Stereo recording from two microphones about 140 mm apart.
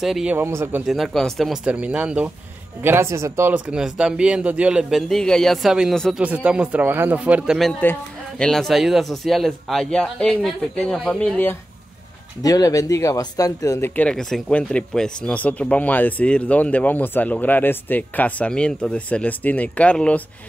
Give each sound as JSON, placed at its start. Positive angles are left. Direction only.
{"t": 0.0, "sound": "a man's voice", "side_deg": -5}
{"t": 0.4, "sound": "speech", "side_deg": -15}
{"t": 0.8, "sound": "speech", "side_deg": 0}
{"t": 3.7, "sound": "a man's voice", "side_deg": -5}
{"t": 7.8, "sound": "speech", "side_deg": 15}
{"t": 8.5, "sound": "a man's voice", "side_deg": 0}
{"t": 12.4, "sound": "speech", "side_deg": 25}